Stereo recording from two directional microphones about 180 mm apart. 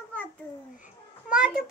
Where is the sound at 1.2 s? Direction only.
5° right (ahead or behind).